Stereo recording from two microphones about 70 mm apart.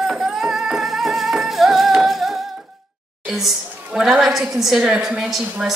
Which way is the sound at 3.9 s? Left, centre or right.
Centre.